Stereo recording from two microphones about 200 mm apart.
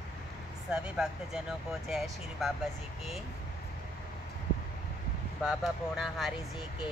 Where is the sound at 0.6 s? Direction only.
5° right (ahead or behind).